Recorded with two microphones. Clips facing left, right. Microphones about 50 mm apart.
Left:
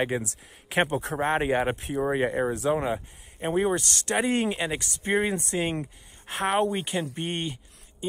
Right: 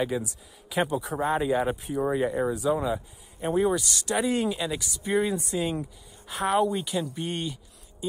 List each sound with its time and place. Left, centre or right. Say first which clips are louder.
0.2 s speech: even; left